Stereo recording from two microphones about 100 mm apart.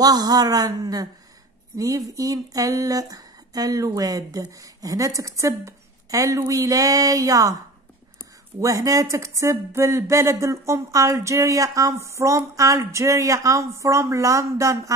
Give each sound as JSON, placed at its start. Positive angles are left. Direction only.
{"t": 0.0, "sound": "speech", "side_deg": -40}
{"t": 8.5, "sound": "speech", "side_deg": -35}